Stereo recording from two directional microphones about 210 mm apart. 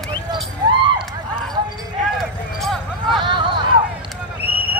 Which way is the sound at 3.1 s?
20° right (ahead or behind).